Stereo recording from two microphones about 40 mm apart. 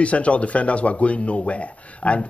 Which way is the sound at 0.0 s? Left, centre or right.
Left.